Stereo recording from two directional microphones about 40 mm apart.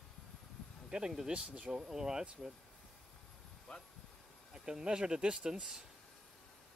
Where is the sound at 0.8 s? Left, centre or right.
Centre.